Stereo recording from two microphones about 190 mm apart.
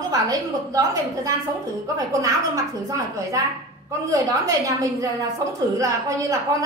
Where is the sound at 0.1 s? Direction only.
20° right (ahead or behind).